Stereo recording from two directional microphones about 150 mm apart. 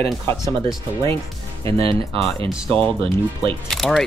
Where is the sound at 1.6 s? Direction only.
40° right (ahead or behind).